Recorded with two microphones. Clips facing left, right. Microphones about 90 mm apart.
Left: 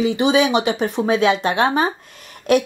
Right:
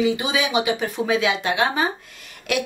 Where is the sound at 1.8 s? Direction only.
40° left (ahead or behind).